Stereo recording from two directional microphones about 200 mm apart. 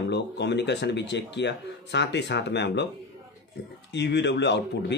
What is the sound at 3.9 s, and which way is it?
Speech, 60° left (ahead or behind).